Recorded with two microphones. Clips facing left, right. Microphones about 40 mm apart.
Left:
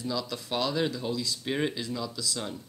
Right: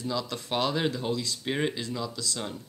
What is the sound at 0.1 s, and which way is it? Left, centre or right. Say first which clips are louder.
Speech: right 2 dB; centre.